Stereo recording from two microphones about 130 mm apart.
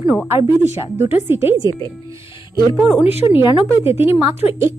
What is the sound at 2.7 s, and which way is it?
Speech, 5° right (ahead or behind).